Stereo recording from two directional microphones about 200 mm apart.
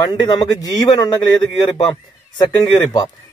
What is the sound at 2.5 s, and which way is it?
Speech, 20° left (ahead or behind).